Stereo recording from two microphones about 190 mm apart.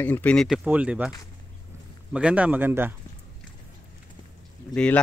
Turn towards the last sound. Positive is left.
turn(degrees=5)  # may be behind; listen again after turning